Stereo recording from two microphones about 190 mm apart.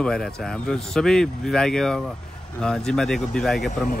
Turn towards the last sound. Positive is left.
turn(degrees=0)  # may be behind; listen again after turning